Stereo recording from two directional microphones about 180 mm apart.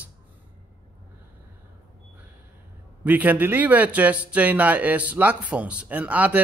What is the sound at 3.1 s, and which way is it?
Speech, 10° right (ahead or behind).